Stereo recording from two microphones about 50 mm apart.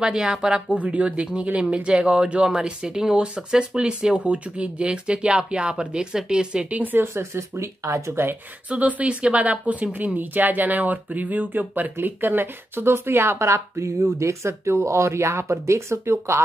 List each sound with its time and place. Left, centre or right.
0.0 s speech: centre
0.7 s speech: right
7.0 s speech: right
8.6 s speech: right